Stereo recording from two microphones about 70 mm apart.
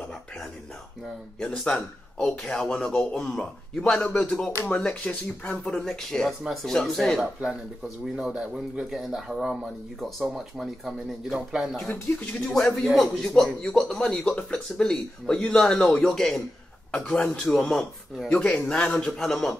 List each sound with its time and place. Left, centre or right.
1.4 s speech: centre
8.0 s speech: centre
12.4 s speech: centre
18.3 s speech: centre
19.1 s speech: centre